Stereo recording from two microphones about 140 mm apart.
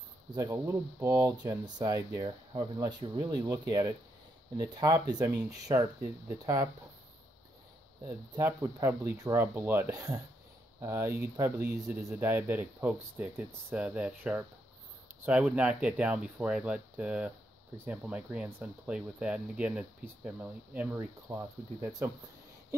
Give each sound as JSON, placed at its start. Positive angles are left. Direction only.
{"t": 0.4, "sound": "speech", "side_deg": -15}
{"t": 8.4, "sound": "speech", "side_deg": -15}